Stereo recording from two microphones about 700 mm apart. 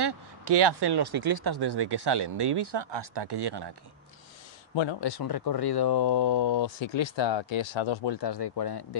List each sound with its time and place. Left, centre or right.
0.0 s speech: right
4.7 s speech: left